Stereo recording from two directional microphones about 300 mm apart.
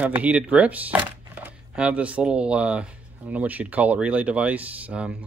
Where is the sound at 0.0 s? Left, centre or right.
Centre.